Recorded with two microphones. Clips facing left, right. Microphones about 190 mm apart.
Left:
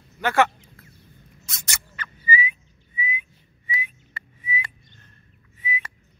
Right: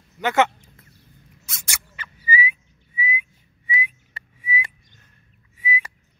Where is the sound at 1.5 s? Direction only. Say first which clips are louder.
Even; 10° right (ahead or behind).